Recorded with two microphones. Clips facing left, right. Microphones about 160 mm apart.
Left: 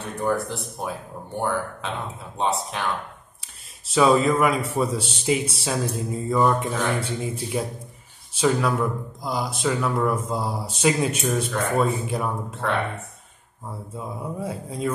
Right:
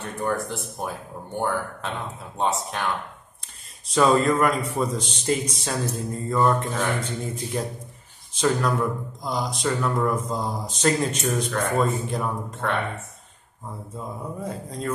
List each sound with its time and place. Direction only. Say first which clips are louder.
0.0 s speech: left 2 dB; centre (ahead or behind)
3.8 s speech: left 1 dB; 5° left (ahead or behind)